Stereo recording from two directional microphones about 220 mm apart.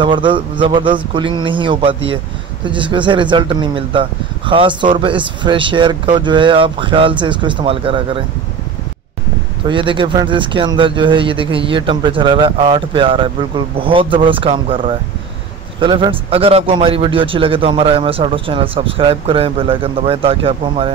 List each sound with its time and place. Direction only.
0.0 s speech: 20° right (ahead or behind)
9.7 s speech: 20° right (ahead or behind)